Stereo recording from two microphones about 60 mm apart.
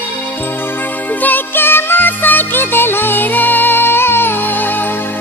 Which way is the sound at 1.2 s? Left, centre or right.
Left.